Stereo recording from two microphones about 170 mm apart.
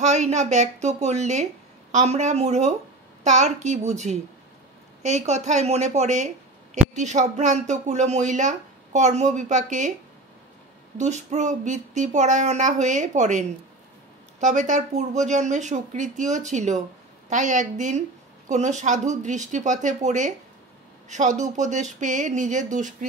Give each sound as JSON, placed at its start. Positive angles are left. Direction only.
{"t": 0.0, "sound": "a woman's voice", "side_deg": -45}
{"t": 11.0, "sound": "speech", "side_deg": -45}